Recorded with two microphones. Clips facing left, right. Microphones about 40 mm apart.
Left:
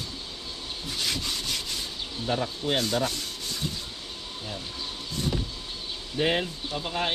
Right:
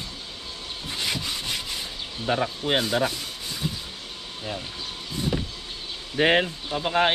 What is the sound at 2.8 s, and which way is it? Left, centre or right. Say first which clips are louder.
Rub: right 3 dB; centre.